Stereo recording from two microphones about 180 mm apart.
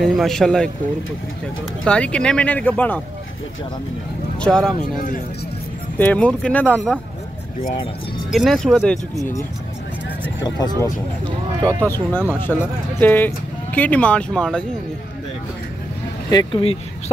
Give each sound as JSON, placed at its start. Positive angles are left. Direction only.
{"t": 0.0, "sound": "speech", "side_deg": 0}
{"t": 1.9, "sound": "speech", "side_deg": 5}
{"t": 4.4, "sound": "speech", "side_deg": 5}
{"t": 5.9, "sound": "speech", "side_deg": 10}
{"t": 8.3, "sound": "speech", "side_deg": 0}
{"t": 10.4, "sound": "speech", "side_deg": 20}
{"t": 16.3, "sound": "speech", "side_deg": 25}